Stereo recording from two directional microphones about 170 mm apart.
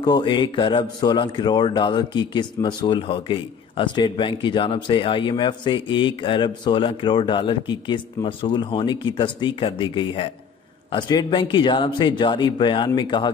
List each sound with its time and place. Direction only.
0.0 s speech: 25° left (ahead or behind)